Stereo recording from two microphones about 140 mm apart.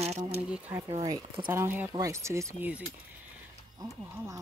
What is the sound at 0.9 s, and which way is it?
Speech, 30° right (ahead or behind).